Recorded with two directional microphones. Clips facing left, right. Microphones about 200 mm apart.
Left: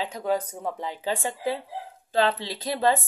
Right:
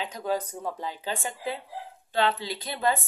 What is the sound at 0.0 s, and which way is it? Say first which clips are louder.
Speech: left 3 dB; 30° left (ahead or behind).